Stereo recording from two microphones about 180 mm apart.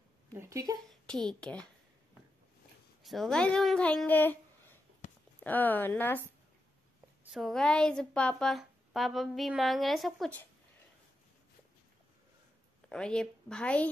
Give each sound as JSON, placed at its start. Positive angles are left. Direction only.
{"t": 0.3, "sound": "a woman's voice", "side_deg": -15}
{"t": 1.0, "sound": "a woman's voice", "side_deg": 5}
{"t": 3.0, "sound": "a woman's voice", "side_deg": 0}
{"t": 7.2, "sound": "a woman's voice", "side_deg": 0}
{"t": 12.9, "sound": "a woman's voice", "side_deg": 5}